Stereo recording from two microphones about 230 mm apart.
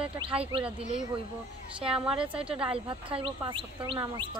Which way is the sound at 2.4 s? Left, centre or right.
Right.